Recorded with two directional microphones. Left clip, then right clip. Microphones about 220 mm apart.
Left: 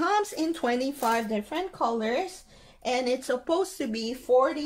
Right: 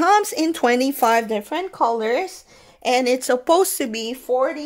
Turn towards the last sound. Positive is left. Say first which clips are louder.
# right 2 dB
turn(degrees=-40)  # may be behind; listen again after turning